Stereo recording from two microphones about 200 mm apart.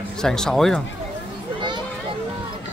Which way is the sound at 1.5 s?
25° right (ahead or behind).